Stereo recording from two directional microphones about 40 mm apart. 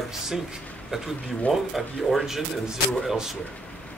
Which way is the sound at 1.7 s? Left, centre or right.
Centre.